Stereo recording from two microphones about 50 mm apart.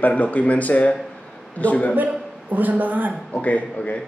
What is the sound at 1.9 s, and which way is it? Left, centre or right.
A man's voice, right.